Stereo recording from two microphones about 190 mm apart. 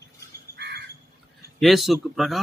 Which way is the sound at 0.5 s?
60° right (ahead or behind).